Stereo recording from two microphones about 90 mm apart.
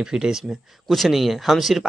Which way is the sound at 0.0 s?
5° right (ahead or behind).